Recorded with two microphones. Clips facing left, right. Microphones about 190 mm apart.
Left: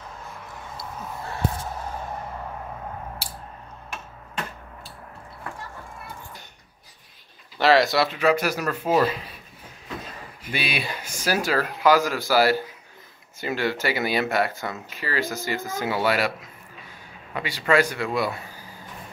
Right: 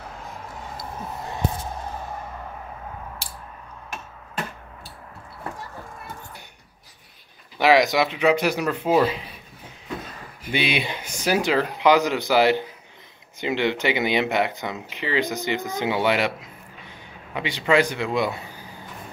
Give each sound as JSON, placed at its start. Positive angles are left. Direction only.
{"t": 7.5, "sound": "speech", "side_deg": -15}
{"t": 10.5, "sound": "speech", "side_deg": -20}